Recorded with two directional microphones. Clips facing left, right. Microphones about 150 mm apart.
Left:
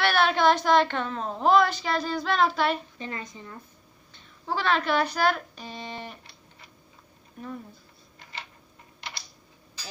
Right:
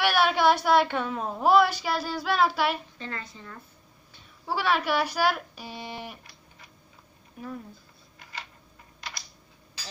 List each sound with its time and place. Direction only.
0.0 s a woman's voice: 10° right (ahead or behind)
3.0 s a woman's voice: 15° left (ahead or behind)
4.1 s speech: 10° right (ahead or behind)
7.4 s speech: 5° right (ahead or behind)